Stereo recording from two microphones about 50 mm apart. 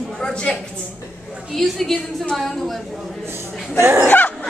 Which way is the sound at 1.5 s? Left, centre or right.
Centre.